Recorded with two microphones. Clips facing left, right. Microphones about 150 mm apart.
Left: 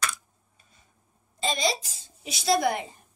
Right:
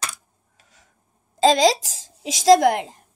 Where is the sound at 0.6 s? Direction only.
90° right.